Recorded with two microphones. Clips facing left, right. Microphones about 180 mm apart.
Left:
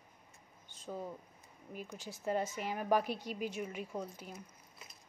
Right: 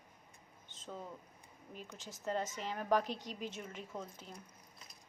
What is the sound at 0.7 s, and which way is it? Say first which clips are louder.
Speech: even; 20° right (ahead or behind).